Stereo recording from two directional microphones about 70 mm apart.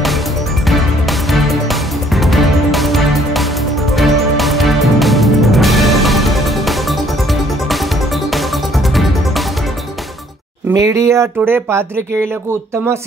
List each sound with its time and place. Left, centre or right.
1.3 s music: centre
10.7 s speech: right